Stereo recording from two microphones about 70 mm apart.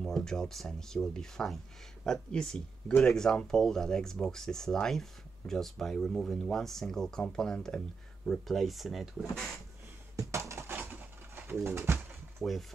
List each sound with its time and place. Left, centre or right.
0.0 s speech: centre
10.1 s a sound: right
10.9 s pigeon: right
11.6 s bird: right
12.4 s speech: centre